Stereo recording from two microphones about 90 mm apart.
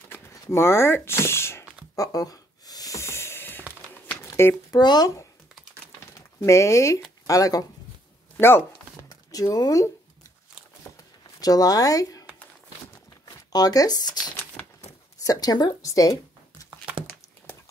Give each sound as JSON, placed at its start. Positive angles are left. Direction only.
{"t": 0.3, "sound": "speech", "side_deg": 30}
{"t": 2.0, "sound": "snort", "side_deg": 40}
{"t": 4.2, "sound": "a sound", "side_deg": 30}
{"t": 4.7, "sound": "speech", "side_deg": 50}
{"t": 8.4, "sound": "speech", "side_deg": 25}
{"t": 9.1, "sound": "speech", "side_deg": 45}
{"t": 11.4, "sound": "speech", "side_deg": 40}
{"t": 15.2, "sound": "speech", "side_deg": 45}
{"t": 16.9, "sound": "a sound", "side_deg": -15}